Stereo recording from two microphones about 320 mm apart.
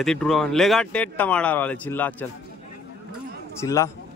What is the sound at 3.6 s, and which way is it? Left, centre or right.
Speech, centre.